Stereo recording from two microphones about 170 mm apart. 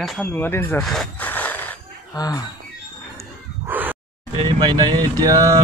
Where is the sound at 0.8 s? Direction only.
5° left (ahead or behind).